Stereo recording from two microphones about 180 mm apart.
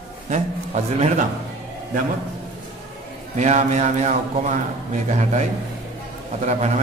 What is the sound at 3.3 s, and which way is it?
Speech, 40° right (ahead or behind).